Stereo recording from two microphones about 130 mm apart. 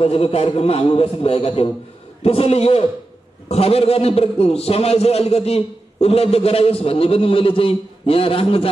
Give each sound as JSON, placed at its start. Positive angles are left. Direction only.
{"t": 0.0, "sound": "a man's voice", "side_deg": 50}